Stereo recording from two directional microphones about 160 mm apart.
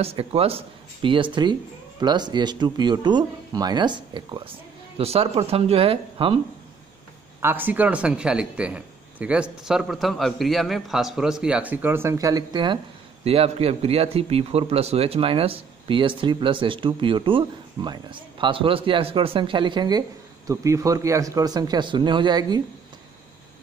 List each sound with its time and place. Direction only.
0.0 s speech: 40° right (ahead or behind)
7.3 s speech: 15° right (ahead or behind)
13.2 s speech: 40° right (ahead or behind)